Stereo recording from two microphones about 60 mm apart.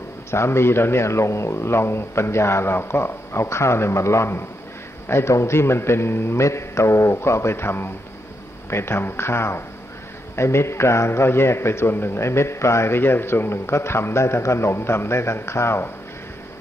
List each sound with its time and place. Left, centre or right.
0.3 s a man's voice: left